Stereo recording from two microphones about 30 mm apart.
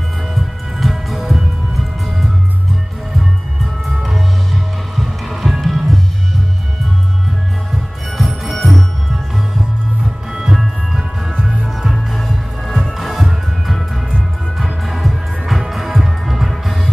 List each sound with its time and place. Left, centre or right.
0.3 s music: centre
4.0 s music: centre
8.2 s music: centre
10.3 s music: centre
10.6 s music: centre
11.9 s music: centre
14.9 s music: centre